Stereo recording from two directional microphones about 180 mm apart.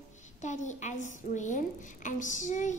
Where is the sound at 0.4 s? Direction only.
40° left (ahead or behind).